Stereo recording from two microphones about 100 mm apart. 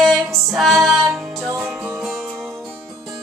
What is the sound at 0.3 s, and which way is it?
Music, centre (ahead or behind).